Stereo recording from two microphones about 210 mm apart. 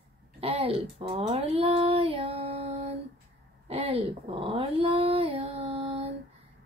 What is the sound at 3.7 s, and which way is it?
Dog, 25° right (ahead or behind).